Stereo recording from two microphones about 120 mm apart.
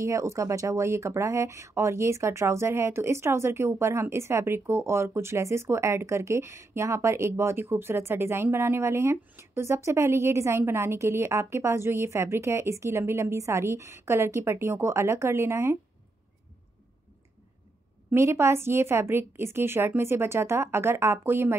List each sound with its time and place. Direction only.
0.0 s speech: 25° right (ahead or behind)
18.1 s speech: 20° right (ahead or behind)